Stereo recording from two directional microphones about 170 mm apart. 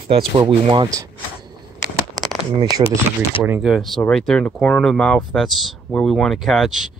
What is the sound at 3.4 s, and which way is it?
Speech, 10° right (ahead or behind).